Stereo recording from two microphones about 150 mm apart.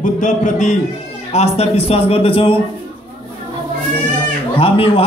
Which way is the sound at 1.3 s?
45° left (ahead or behind).